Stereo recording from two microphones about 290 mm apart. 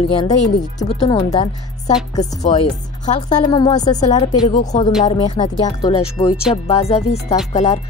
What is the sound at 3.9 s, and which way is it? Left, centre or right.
A woman's voice, left.